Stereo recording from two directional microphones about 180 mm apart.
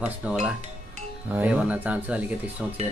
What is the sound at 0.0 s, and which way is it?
Speech, 5° right (ahead or behind).